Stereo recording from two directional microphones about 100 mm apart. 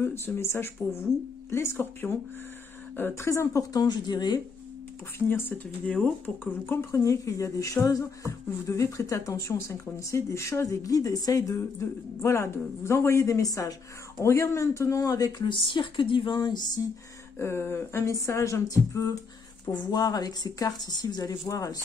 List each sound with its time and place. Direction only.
0.0 s speech: 25° left (ahead or behind); by 4.4 s 45° left (ahead or behind)
5.3 s speech: 20° left (ahead or behind)
5.9 s speech: 10° left (ahead or behind); by 15.4 s 35° left (ahead or behind)
15.4 s a woman's voice: 55° left (ahead or behind)
17.4 s speech: 25° left (ahead or behind)
19.7 s speech: 45° left (ahead or behind)